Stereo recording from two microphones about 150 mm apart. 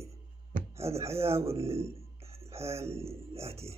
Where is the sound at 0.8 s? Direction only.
45° right (ahead or behind).